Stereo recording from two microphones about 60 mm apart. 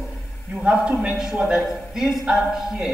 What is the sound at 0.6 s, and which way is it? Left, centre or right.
A man's voice, centre.